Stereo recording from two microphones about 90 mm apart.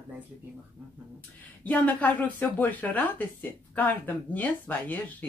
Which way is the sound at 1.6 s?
20° left (ahead or behind).